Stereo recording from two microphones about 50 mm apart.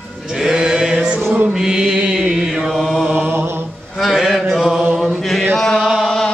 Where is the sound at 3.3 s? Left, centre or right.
Right.